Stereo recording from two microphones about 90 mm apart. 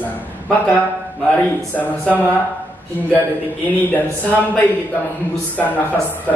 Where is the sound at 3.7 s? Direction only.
20° left (ahead or behind).